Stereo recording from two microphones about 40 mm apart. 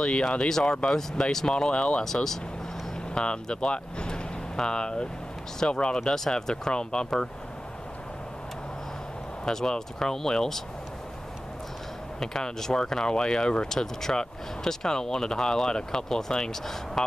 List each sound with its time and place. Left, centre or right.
0.0 s speech: left
1.5 s speech: left
3.2 s speech: left
6.0 s speech: centre
9.4 s speech: centre
12.2 s speech: centre